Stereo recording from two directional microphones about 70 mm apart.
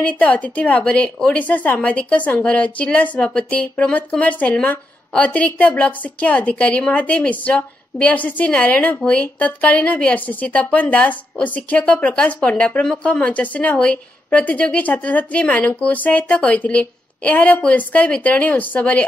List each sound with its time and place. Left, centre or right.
0.0 s a woman's voice: left